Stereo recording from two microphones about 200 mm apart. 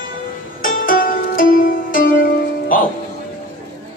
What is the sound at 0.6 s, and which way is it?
Music, 45° left (ahead or behind).